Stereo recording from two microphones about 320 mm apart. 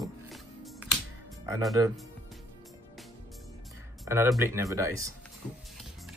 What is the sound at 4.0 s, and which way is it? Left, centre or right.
Speech, centre.